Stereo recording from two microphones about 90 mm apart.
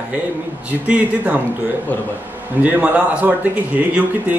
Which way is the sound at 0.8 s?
15° right (ahead or behind).